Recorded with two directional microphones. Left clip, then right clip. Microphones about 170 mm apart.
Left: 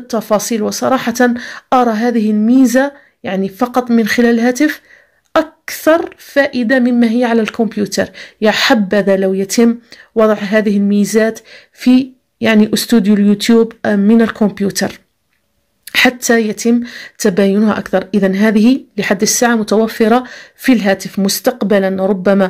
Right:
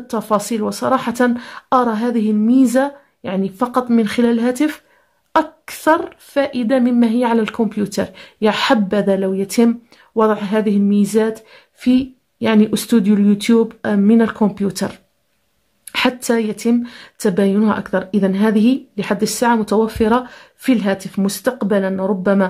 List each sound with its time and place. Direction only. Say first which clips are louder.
0.1 s speech: left 4 dB; centre (ahead or behind)